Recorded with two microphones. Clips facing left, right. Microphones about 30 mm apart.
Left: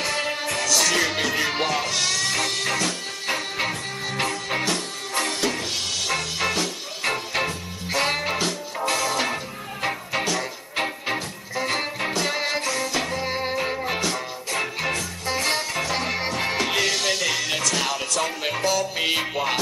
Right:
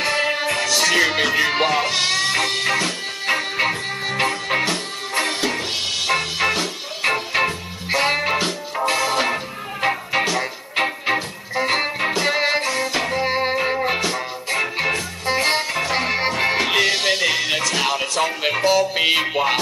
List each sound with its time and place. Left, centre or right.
0.0 s music: right